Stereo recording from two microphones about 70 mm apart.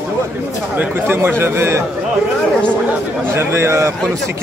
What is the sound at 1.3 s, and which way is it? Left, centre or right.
Speech, right.